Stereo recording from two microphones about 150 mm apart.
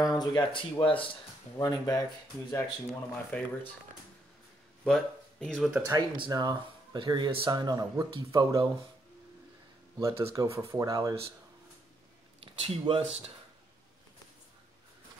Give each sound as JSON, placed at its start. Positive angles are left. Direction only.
{"t": 0.0, "sound": "speech", "side_deg": 25}
{"t": 2.9, "sound": "speech", "side_deg": 10}
{"t": 4.8, "sound": "speech", "side_deg": 5}
{"t": 5.9, "sound": "speech", "side_deg": -30}
{"t": 9.9, "sound": "speech", "side_deg": -20}
{"t": 12.5, "sound": "speech", "side_deg": -35}